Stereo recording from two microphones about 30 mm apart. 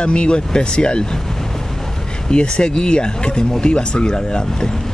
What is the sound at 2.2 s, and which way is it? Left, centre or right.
Speech, left.